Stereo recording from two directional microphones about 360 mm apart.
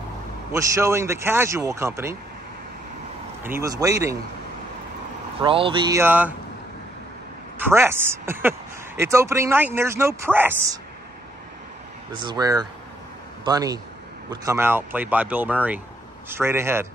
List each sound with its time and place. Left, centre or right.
0.5 s speech: centre
3.4 s speech: centre
5.4 s speech: centre
7.5 s speech: centre
12.2 s speech: centre